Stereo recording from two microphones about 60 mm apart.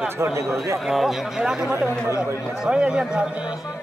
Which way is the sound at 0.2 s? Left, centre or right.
Right.